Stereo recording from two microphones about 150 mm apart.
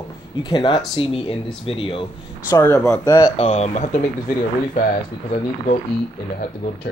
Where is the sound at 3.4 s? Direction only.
45° left (ahead or behind).